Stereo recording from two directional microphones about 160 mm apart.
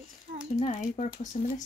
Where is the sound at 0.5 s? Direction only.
45° left (ahead or behind).